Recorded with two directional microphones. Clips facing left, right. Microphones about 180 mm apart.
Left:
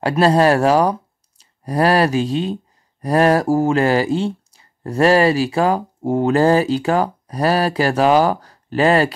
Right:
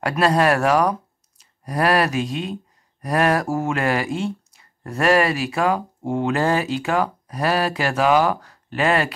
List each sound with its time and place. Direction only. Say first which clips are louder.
0.0 s speech: left 4 dB; 30° left (ahead or behind)